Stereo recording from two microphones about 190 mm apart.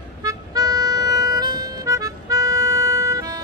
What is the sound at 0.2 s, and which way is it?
Harmonica, 20° right (ahead or behind).